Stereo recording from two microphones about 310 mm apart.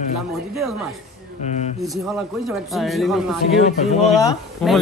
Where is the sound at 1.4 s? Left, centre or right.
Left.